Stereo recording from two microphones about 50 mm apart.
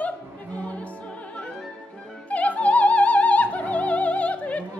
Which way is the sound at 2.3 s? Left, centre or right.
Left.